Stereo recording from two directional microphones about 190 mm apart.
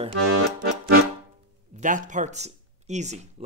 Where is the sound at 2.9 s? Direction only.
35° right (ahead or behind).